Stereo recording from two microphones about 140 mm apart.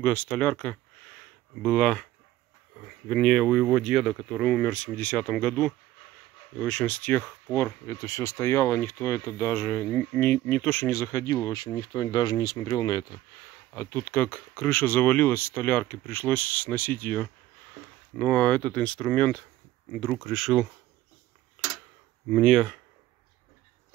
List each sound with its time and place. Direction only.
0.0 s speech: 10° left (ahead or behind)
3.1 s speech: 5° left (ahead or behind); by 13.0 s 25° left (ahead or behind)
13.7 s speech: 15° left (ahead or behind); by 20.6 s centre (ahead or behind)
22.3 s speech: centre (ahead or behind)